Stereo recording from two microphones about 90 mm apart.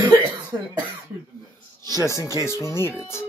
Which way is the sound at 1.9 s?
35° left (ahead or behind).